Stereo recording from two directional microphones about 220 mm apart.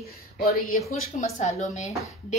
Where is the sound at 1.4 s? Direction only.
30° left (ahead or behind).